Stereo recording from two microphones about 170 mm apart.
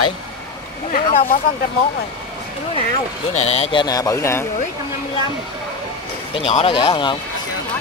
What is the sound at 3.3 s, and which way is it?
Speech, 40° left (ahead or behind).